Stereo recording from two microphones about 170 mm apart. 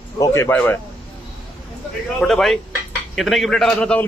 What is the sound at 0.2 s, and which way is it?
Speech, 15° left (ahead or behind).